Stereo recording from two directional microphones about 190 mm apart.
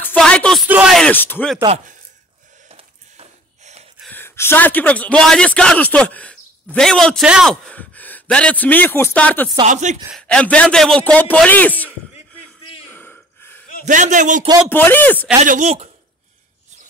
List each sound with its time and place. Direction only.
0.0 s a sound: 5° left (ahead or behind)
0.7 s speech: 5° right (ahead or behind)
2.7 s a sound: 30° right (ahead or behind)
4.0 s a man's voice: 10° left (ahead or behind)
9.7 s a man's voice: 40° right (ahead or behind)
10.1 s a man's voice: 5° left (ahead or behind)
12.9 s gasp: 10° left (ahead or behind)
13.8 s a man's voice: 40° right (ahead or behind)
14.7 s a man's voice: 10° left (ahead or behind)
15.4 s a man's voice: 40° right (ahead or behind)